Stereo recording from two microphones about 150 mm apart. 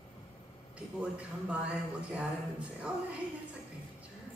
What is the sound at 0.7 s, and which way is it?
A woman's voice, 10° right (ahead or behind).